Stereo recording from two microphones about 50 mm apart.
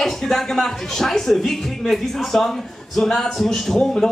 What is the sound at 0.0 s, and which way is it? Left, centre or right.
Speech, centre.